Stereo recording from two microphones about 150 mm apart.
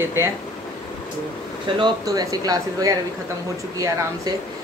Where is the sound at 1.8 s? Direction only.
25° right (ahead or behind).